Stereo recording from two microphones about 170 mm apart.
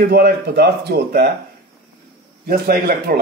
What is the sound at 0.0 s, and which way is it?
Speech, 75° right (ahead or behind).